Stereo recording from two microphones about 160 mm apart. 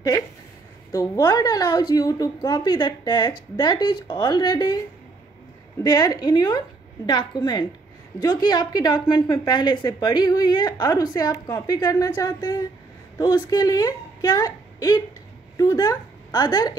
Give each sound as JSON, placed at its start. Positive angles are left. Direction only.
{"t": 0.9, "sound": "a woman's voice", "side_deg": 25}
{"t": 5.9, "sound": "a woman's voice", "side_deg": 25}